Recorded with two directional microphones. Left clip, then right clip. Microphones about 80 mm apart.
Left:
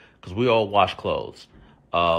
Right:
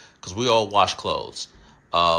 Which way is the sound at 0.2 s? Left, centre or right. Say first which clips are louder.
Even; right.